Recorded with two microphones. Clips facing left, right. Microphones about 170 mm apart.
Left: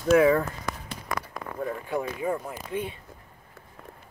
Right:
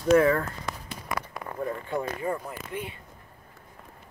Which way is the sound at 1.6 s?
5° left (ahead or behind).